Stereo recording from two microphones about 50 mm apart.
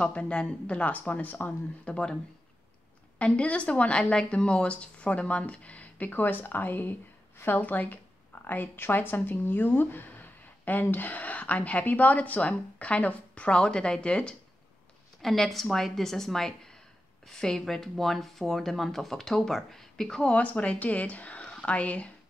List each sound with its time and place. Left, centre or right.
0.0 s speech: centre
3.2 s speech: left
8.7 s speech: left; by 14.3 s centre
15.2 s speech: centre
20.2 s speech: left
21.4 s speech: centre